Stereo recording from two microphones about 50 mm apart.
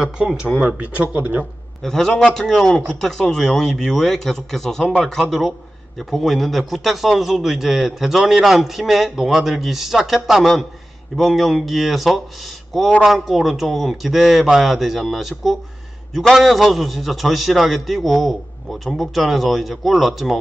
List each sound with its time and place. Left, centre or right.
0.8 s speech: right
1.8 s speech: centre
5.9 s a man's voice: centre